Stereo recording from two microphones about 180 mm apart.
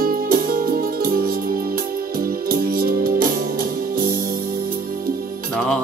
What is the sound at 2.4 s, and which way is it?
Music, 55° right (ahead or behind).